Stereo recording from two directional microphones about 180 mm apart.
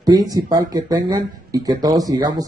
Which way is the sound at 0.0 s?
20° right (ahead or behind).